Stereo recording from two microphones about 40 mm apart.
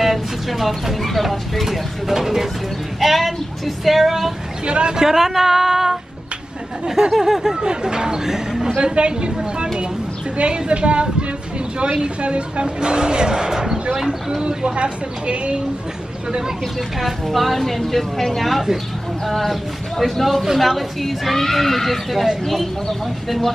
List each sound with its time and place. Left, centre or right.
0.0 s speech: centre
4.6 s speech: right
4.9 s speech: centre
7.1 s speech: centre
7.6 s speech: centre
14.5 s speech: right
16.3 s speech: centre
17.0 s speech: centre